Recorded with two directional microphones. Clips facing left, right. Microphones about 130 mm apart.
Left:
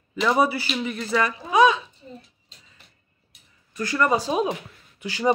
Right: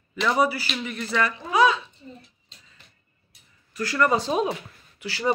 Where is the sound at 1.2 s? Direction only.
20° left (ahead or behind).